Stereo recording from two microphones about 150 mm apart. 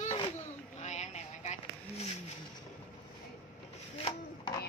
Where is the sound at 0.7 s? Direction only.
50° left (ahead or behind).